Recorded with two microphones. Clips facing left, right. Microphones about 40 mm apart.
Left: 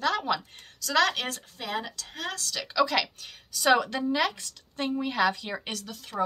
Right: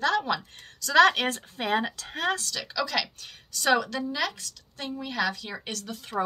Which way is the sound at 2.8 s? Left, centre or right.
Centre.